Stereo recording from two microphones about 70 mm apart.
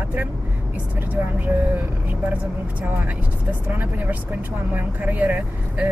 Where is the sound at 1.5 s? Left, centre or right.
Centre.